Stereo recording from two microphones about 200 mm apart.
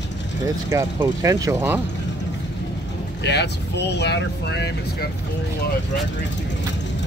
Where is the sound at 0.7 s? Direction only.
15° right (ahead or behind).